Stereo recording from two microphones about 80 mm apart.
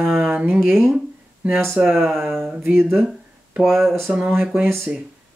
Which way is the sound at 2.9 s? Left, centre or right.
Centre.